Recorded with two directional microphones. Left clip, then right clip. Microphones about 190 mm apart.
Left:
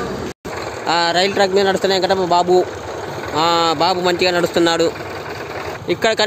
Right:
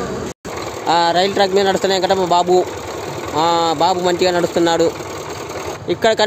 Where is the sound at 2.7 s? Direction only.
60° right (ahead or behind).